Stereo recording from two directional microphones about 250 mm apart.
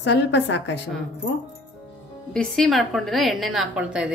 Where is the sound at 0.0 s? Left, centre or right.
Left.